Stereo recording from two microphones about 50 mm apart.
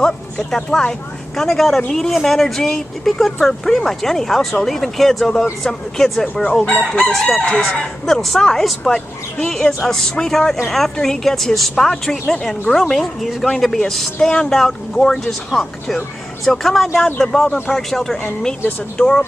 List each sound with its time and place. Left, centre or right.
0.0 s a woman's voice: centre
6.6 s chicken: left
7.1 s a woman's voice: centre
8.1 s a woman's voice: centre
16.4 s a woman's voice: centre